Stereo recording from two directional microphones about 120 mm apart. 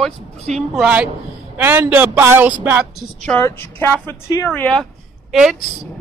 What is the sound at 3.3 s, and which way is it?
Speech, 20° left (ahead or behind).